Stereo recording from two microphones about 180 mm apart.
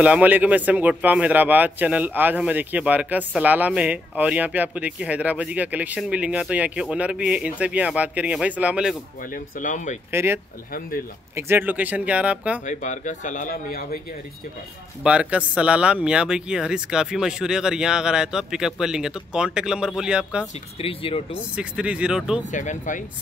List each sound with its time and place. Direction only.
0.0 s a man's voice: 10° right (ahead or behind)
9.2 s speech: 45° left (ahead or behind)
10.1 s a man's voice: 15° right (ahead or behind)
10.7 s speech: 55° left (ahead or behind)
11.3 s a man's voice: 10° right (ahead or behind)
12.6 s speech: 45° left (ahead or behind)
15.0 s speech: 5° right (ahead or behind)
20.8 s speech: 30° left (ahead or behind)
21.5 s speech: 5° right (ahead or behind)
22.4 s speech: 45° left (ahead or behind)